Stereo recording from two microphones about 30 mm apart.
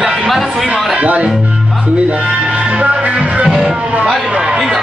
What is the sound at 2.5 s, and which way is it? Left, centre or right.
Music, right.